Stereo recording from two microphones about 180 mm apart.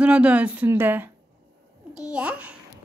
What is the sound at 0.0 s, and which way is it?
A woman's voice, 5° right (ahead or behind).